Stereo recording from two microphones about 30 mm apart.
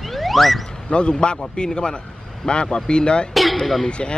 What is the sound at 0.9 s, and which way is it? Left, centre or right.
Speech, left.